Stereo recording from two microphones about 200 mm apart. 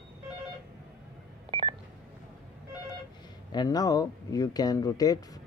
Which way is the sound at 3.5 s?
20° left (ahead or behind).